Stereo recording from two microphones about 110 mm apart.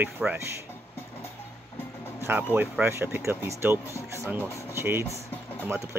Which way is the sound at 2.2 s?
15° right (ahead or behind).